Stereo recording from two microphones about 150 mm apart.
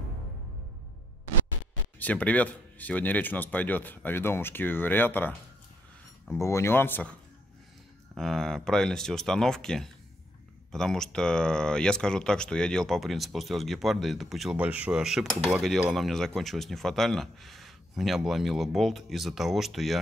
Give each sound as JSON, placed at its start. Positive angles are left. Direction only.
{"t": 2.0, "sound": "speech", "side_deg": 10}
{"t": 6.3, "sound": "speech", "side_deg": 20}
{"t": 8.2, "sound": "speech", "side_deg": 5}